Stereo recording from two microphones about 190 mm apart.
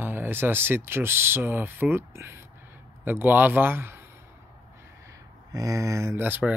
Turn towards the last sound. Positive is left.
turn(degrees=-10)  # may be behind; listen again after turning